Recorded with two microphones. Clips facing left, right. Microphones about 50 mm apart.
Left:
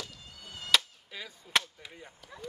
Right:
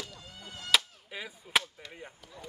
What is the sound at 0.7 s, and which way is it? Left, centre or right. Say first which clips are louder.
Chop: even; centre.